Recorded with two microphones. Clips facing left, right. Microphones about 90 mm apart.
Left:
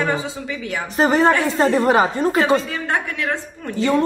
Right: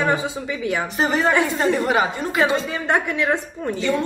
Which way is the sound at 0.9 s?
40° left (ahead or behind).